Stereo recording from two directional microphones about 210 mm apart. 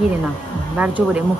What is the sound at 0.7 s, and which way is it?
Speech, 5° right (ahead or behind).